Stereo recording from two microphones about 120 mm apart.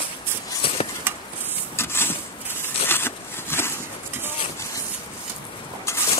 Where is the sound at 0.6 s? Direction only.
50° left (ahead or behind).